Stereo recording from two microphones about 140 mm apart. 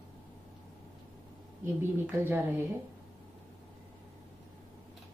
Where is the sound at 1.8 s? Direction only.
15° right (ahead or behind).